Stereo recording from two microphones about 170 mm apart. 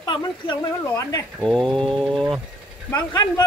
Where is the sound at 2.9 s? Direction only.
20° left (ahead or behind).